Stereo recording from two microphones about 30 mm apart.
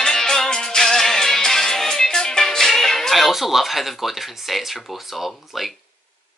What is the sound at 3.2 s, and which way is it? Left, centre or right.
Speech, centre.